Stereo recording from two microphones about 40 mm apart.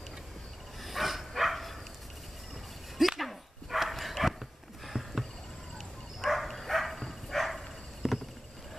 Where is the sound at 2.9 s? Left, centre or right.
Centre.